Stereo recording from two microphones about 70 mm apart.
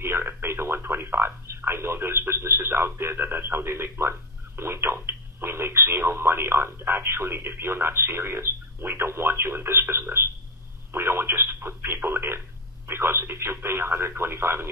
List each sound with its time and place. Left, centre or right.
0.0 s a sound: right
0.3 s radio: right
4.6 s telephone: right
12.8 s radio: right